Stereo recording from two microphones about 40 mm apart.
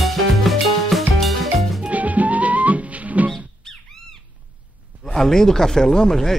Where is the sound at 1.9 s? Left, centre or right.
Right.